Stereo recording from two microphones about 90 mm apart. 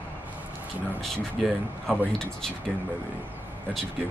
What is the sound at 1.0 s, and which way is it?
Speech, 5° left (ahead or behind).